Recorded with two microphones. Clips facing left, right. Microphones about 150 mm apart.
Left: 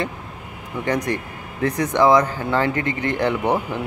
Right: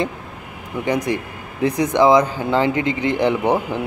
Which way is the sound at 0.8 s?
10° right (ahead or behind).